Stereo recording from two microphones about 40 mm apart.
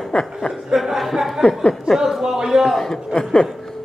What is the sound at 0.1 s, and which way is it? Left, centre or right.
Speech, centre.